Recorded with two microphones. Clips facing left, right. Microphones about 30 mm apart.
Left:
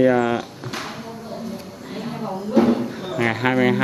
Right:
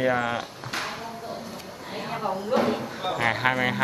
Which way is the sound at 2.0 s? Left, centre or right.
Centre.